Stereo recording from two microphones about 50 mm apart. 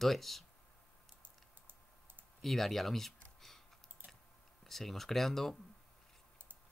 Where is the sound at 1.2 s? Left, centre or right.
Right.